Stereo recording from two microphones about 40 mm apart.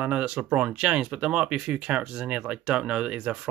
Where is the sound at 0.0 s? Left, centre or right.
Right.